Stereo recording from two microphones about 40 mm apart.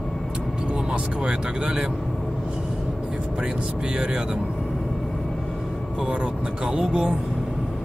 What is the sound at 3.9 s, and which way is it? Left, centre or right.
Speech, right.